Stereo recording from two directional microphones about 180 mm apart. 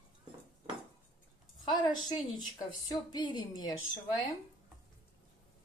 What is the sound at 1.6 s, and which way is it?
A woman's voice, 25° left (ahead or behind).